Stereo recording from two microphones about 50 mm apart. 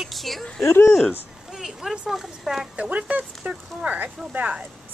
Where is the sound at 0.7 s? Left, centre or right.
Left.